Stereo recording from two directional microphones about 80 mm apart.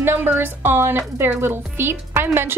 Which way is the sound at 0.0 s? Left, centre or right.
Right.